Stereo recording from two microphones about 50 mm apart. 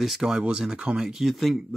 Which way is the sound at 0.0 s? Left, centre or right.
Centre.